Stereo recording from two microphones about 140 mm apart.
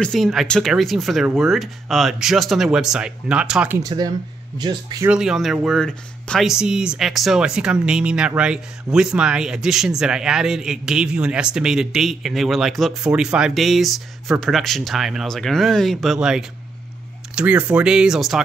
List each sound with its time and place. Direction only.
0.0 s speech: centre (ahead or behind)
3.8 s speech: 30° right (ahead or behind)
5.0 s speech: 5° right (ahead or behind)